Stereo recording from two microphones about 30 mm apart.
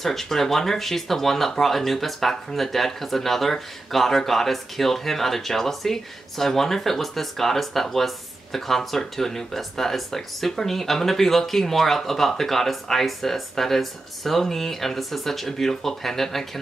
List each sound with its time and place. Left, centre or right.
0.0 s speech: centre